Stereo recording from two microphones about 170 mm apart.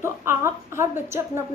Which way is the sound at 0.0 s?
15° right (ahead or behind).